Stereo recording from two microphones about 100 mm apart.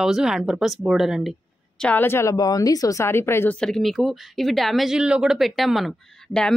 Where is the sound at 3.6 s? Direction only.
5° left (ahead or behind).